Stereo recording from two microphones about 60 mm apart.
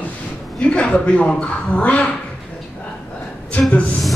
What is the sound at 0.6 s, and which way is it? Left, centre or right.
Speech, centre.